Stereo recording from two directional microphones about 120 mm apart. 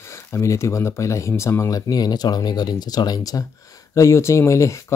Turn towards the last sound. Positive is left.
turn(degrees=25)  # may be behind; listen again after turning